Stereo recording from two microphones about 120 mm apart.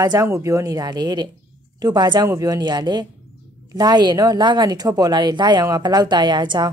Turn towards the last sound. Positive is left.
turn(degrees=-40)  # may be behind; listen again after turning